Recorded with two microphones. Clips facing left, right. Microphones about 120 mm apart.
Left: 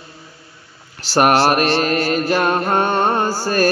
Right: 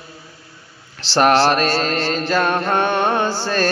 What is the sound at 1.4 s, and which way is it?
Mantra, 60° left (ahead or behind).